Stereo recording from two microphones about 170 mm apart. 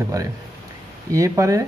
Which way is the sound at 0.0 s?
20° right (ahead or behind).